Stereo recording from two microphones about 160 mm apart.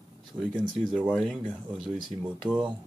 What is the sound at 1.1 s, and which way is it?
Speech, centre (ahead or behind).